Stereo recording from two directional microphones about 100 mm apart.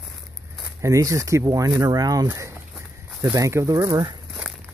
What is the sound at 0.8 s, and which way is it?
Speech, 30° right (ahead or behind).